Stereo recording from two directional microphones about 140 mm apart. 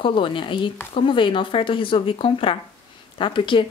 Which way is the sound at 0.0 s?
35° left (ahead or behind).